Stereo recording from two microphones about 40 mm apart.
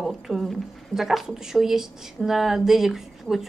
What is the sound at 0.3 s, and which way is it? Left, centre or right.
Speech, centre.